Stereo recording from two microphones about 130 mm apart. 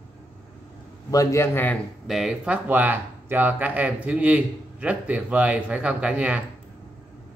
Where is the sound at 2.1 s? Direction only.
5° right (ahead or behind).